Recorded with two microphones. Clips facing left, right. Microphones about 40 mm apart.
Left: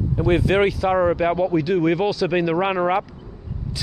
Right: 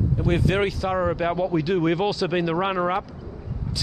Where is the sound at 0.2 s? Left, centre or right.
Centre.